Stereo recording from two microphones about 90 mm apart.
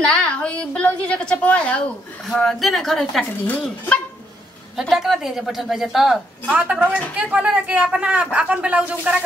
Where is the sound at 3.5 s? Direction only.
15° left (ahead or behind).